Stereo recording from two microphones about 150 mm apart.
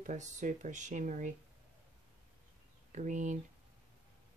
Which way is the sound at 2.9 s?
55° right (ahead or behind).